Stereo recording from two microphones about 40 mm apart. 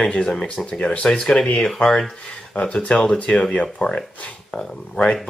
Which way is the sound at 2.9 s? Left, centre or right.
Left.